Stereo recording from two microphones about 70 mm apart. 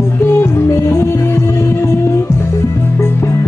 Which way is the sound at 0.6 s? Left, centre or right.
Left.